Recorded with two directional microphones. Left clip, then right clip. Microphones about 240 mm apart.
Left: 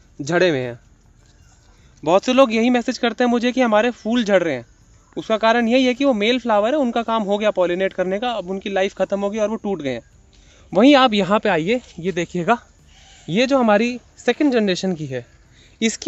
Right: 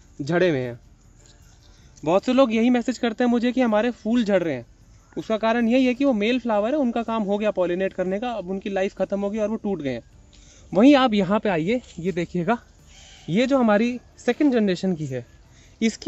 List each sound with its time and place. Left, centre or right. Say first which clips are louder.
0.2 s speech: left 4 dB; left
2.0 s speech: left 4 dB; left
12.9 s a sound: right 1 dB; centre
13.3 s speech: left 4 dB; centre